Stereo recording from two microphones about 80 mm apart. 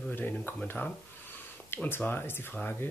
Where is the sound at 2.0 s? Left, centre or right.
Left.